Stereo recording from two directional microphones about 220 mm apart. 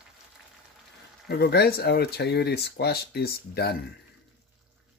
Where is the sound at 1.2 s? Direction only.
45° left (ahead or behind).